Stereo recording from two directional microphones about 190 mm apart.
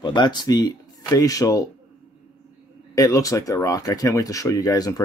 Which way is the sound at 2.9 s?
20° left (ahead or behind).